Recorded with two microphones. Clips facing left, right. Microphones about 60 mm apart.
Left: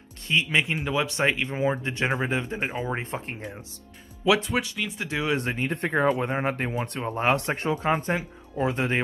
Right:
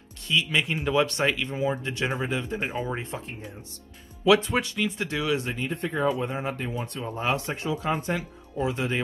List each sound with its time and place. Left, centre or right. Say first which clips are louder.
0.3 s speech: left 1 dB; left
0.7 s speech: right 3 dB; centre
1.2 s speech: left 1 dB; left
2.6 s speech: even; centre
2.9 s speech: left 2 dB; left
4.2 s speech: right 2 dB; centre
5.3 s speech: left 1 dB; left
7.1 s speech: left 4 dB; left